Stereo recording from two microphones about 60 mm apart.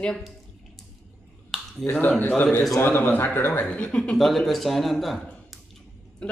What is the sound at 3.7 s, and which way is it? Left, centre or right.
Speech, centre.